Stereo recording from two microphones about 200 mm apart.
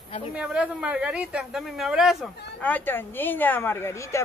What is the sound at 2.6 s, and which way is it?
Speech, 10° left (ahead or behind).